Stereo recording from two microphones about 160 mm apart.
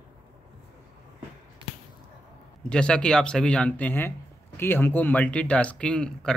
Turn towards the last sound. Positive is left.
turn(degrees=5)  # may be behind; listen again after turning